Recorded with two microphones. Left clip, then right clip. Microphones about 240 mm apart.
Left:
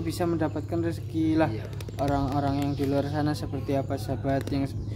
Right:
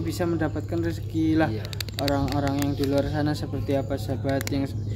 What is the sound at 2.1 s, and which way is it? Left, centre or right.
Speech, centre.